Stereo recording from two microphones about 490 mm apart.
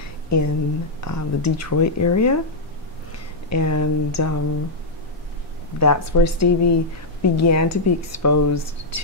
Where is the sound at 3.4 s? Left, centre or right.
Left.